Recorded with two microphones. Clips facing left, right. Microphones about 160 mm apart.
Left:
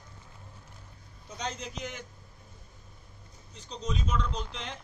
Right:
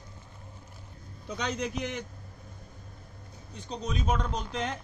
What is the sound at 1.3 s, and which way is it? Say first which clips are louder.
Speech: right 5 dB; 65° right (ahead or behind).